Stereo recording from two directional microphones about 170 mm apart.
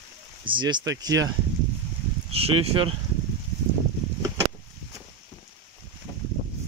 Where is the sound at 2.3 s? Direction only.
35° right (ahead or behind).